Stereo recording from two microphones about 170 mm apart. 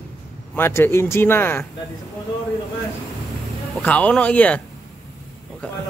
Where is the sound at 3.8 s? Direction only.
10° left (ahead or behind).